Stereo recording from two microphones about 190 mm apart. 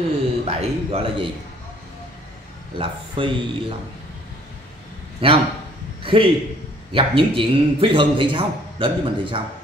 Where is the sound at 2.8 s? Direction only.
30° right (ahead or behind).